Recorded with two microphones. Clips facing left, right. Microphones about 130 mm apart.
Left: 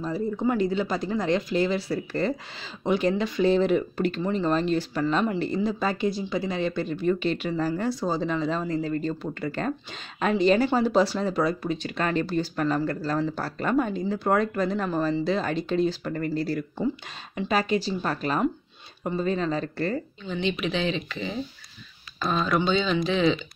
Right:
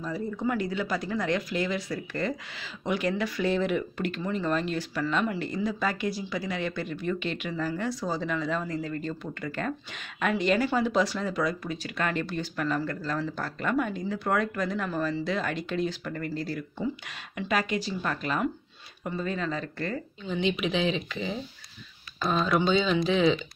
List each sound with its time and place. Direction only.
0.0 s speech: 25° left (ahead or behind)
17.4 s speech: 30° left (ahead or behind)
20.2 s speech: 10° right (ahead or behind)